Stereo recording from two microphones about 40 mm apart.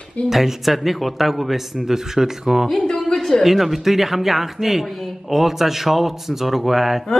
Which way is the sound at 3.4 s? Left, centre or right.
Centre.